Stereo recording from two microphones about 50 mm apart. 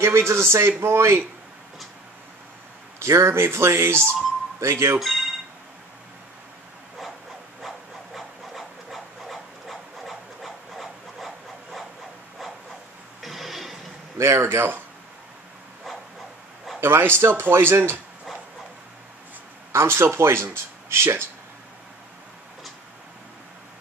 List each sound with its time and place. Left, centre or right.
0.0 s a man's voice: right
3.0 s a man's voice: right
5.0 s telephone: centre
7.6 s wood: centre
13.2 s a sound: centre
14.1 s a man's voice: right
16.8 s speech: right
19.7 s speech: right